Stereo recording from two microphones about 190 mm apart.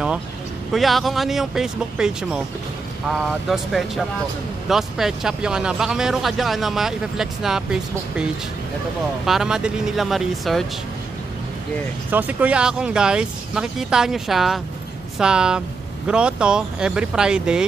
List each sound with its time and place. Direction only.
0.7 s speech: centre (ahead or behind)
12.1 s speech: 10° right (ahead or behind)